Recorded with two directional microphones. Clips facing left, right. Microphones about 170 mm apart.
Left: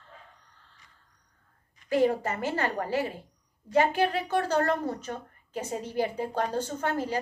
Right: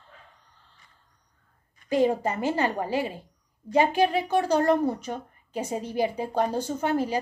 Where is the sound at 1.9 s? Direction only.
15° right (ahead or behind).